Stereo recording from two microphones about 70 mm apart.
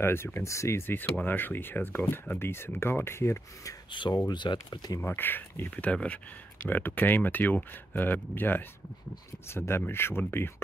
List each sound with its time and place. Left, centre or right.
0.0 s speech: left
1.2 s speech: left
4.3 s speech: left
5.0 s speech: left